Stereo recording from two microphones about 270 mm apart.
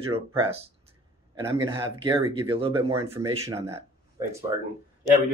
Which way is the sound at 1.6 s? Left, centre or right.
Centre.